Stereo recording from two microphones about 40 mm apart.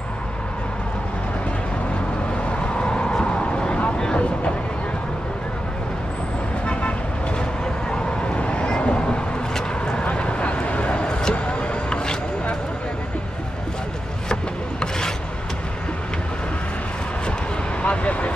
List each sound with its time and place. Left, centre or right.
2.5 s vehicle: left
6.6 s vehicle: left
7.9 s vehicle: left
14.3 s wood: centre
17.8 s vehicle: left